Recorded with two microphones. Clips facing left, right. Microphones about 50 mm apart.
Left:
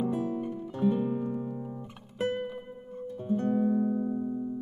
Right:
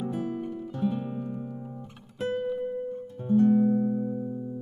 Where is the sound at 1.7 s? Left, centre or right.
Left.